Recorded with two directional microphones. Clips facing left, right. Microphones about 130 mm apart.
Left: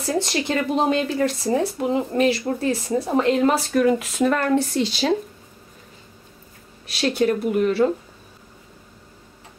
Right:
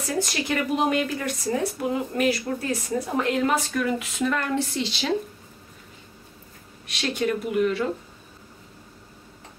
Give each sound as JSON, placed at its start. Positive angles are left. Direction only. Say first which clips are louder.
{"t": 0.0, "sound": "speech", "louder": "left 4 dB", "side_deg": 25}
{"t": 6.9, "sound": "speech", "louder": "left 5 dB", "side_deg": 35}